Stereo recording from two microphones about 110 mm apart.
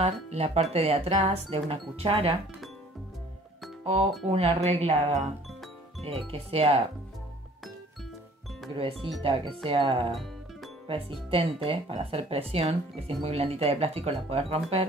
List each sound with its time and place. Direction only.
0.0 s speech: 75° right (ahead or behind); by 2.3 s 60° right (ahead or behind)
3.8 s speech: 70° right (ahead or behind); by 5.2 s 90° right
5.5 s music: centre (ahead or behind)
6.3 s speech: 70° right (ahead or behind)
8.7 s speech: 60° right (ahead or behind)